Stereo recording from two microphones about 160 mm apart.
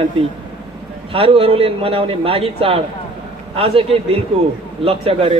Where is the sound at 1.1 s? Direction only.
35° right (ahead or behind).